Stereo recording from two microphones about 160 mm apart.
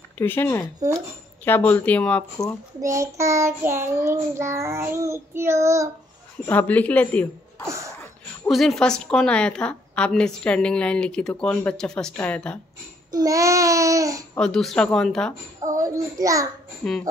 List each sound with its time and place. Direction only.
0.2 s speech: 15° left (ahead or behind)
2.8 s child singing: 20° right (ahead or behind)
6.4 s speech: 10° left (ahead or behind)
7.6 s a sound: 20° right (ahead or behind)
8.5 s a woman's voice: centre (ahead or behind)
13.1 s babbling: 20° right (ahead or behind)
14.3 s a woman's voice: 5° left (ahead or behind)
15.6 s babbling: 20° right (ahead or behind)
16.8 s a woman's voice: 5° left (ahead or behind)